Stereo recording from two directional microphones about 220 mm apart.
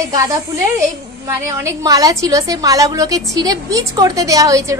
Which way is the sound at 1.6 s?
15° right (ahead or behind).